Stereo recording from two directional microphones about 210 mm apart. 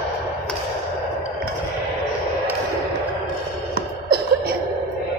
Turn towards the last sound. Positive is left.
turn(degrees=-50)  # may be behind; listen again after turning